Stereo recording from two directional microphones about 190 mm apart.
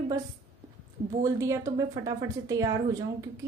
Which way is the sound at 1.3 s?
15° right (ahead or behind).